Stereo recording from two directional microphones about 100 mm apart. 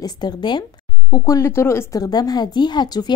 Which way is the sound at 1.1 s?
35° left (ahead or behind).